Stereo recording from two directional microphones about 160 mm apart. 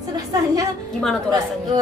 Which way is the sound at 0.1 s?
20° right (ahead or behind).